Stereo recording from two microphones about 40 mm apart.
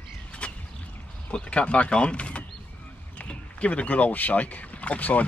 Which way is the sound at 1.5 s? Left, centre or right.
Left.